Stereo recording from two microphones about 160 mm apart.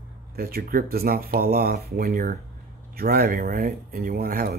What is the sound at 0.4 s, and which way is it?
Speech, 75° right (ahead or behind).